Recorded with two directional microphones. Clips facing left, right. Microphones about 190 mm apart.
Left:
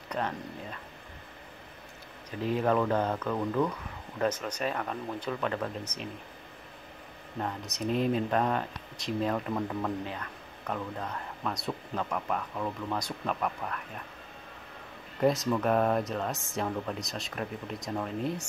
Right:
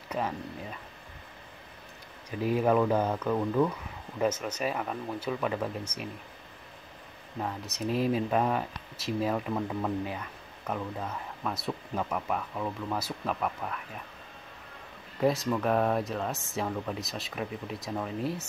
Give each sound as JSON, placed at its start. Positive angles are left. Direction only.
{"t": 0.1, "sound": "speech", "side_deg": -5}
{"t": 2.3, "sound": "speech", "side_deg": -10}
{"t": 7.3, "sound": "speech", "side_deg": 0}
{"t": 15.1, "sound": "speech", "side_deg": 0}